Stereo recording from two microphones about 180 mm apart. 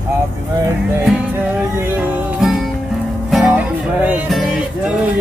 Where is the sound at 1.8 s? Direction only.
10° right (ahead or behind).